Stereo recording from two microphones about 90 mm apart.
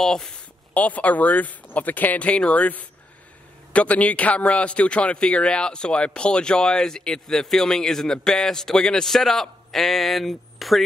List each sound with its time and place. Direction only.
0.0 s speech: 5° left (ahead or behind)
0.7 s a man's voice: 15° left (ahead or behind); by 10.8 s centre (ahead or behind)